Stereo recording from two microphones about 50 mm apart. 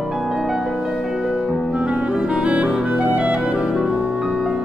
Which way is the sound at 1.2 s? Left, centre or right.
Centre.